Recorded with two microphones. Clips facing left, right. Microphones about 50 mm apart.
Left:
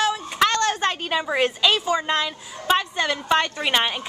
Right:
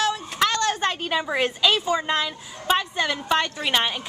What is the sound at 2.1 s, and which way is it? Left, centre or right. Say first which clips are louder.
A woman's voice: left 1 dB; centre.